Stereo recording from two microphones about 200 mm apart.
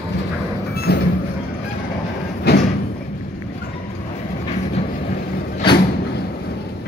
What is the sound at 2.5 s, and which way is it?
Sliding door, 55° left (ahead or behind).